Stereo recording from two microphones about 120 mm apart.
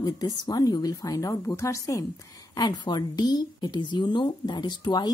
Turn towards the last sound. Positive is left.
turn(degrees=35)  # may be behind; listen again after turning